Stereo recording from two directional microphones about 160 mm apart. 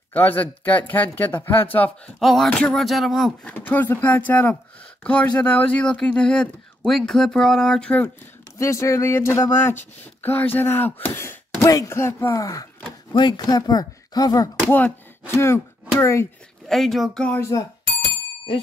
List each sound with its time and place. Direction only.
0.1 s speech: 10° left (ahead or behind)
2.1 s speech: centre (ahead or behind)
3.5 s speech: 10° left (ahead or behind)
8.5 s speech: 20° left (ahead or behind)
14.7 s speech: 15° left (ahead or behind)
16.6 s speech: centre (ahead or behind)
17.4 s speech: 20° left (ahead or behind)